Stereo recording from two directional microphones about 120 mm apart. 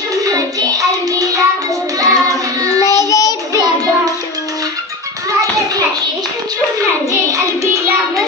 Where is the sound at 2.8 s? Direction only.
30° left (ahead or behind).